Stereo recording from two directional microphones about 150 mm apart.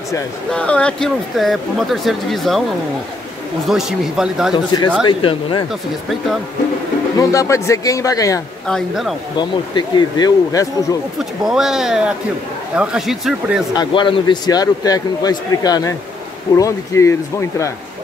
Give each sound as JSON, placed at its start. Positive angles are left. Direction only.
{"t": 0.5, "sound": "speech", "side_deg": 10}
{"t": 3.6, "sound": "speech", "side_deg": -5}
{"t": 5.0, "sound": "speech", "side_deg": 30}
{"t": 7.2, "sound": "a man's voice", "side_deg": 20}
{"t": 8.6, "sound": "speech", "side_deg": 0}
{"t": 9.4, "sound": "a man's voice", "side_deg": 30}
{"t": 11.1, "sound": "speech", "side_deg": 0}
{"t": 13.7, "sound": "a man's voice", "side_deg": 35}